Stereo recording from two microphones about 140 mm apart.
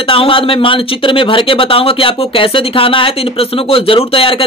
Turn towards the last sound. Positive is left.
turn(degrees=40)  # may be behind; listen again after turning